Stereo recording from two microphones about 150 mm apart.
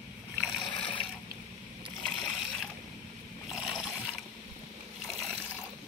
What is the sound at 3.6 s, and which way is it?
Mechanisms, 5° right (ahead or behind).